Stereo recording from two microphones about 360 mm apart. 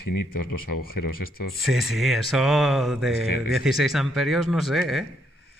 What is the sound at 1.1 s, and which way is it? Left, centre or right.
Speech, left.